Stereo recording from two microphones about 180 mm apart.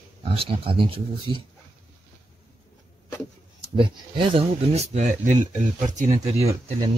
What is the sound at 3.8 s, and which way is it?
Speech, 30° right (ahead or behind).